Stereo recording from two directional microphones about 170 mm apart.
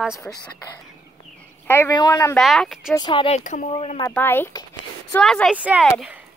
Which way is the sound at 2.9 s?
25° left (ahead or behind).